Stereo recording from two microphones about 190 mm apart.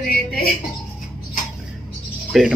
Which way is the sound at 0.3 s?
50° left (ahead or behind).